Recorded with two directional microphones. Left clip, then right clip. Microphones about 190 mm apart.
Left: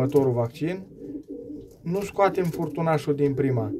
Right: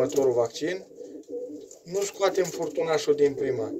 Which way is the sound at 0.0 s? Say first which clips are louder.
Even; 25° left (ahead or behind).